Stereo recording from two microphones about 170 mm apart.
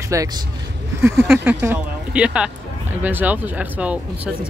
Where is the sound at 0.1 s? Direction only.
20° right (ahead or behind).